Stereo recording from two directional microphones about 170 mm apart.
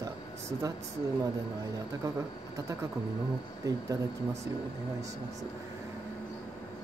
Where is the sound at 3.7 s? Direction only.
20° right (ahead or behind).